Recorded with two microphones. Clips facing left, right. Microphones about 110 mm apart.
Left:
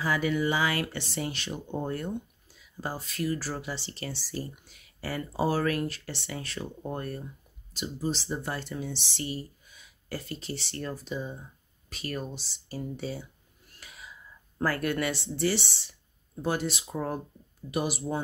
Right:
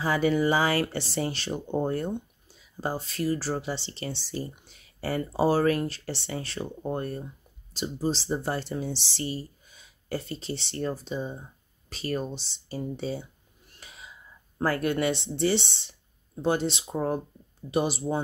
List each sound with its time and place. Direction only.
0.0 s speech: 30° right (ahead or behind)
13.7 s whispering: 25° right (ahead or behind)
14.6 s speech: 25° right (ahead or behind)